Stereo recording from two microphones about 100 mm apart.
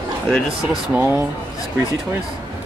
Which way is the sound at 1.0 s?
20° right (ahead or behind).